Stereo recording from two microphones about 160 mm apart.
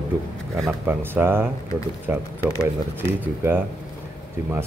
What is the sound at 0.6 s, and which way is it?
Speech, 10° right (ahead or behind).